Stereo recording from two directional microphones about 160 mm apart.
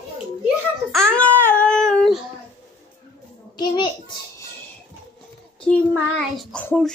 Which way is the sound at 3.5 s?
30° left (ahead or behind).